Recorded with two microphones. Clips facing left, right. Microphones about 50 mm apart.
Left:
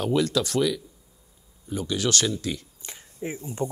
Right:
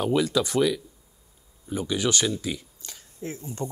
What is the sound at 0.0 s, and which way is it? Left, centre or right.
Speech, centre.